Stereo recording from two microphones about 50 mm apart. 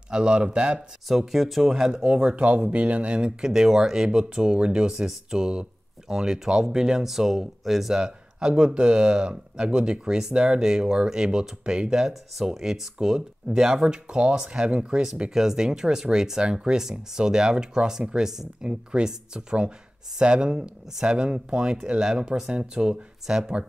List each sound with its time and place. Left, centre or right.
0.1 s speech: centre
0.7 s speech: centre
2.2 s speech: right